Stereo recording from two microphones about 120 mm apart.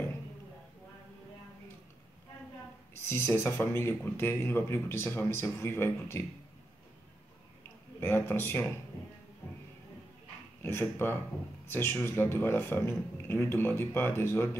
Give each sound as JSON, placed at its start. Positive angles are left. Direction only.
{"t": 3.1, "sound": "speech", "side_deg": 20}
{"t": 8.0, "sound": "speech", "side_deg": 20}
{"t": 10.6, "sound": "speech", "side_deg": 20}